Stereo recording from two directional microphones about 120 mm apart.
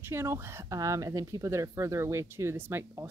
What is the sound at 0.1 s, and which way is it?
Speech, 20° right (ahead or behind).